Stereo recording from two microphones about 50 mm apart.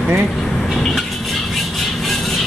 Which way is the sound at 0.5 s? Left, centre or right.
Centre.